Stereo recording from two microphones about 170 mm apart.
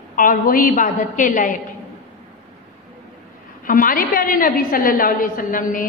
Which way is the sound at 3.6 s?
55° left (ahead or behind).